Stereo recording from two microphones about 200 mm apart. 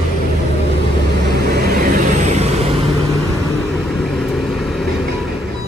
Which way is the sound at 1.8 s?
35° right (ahead or behind).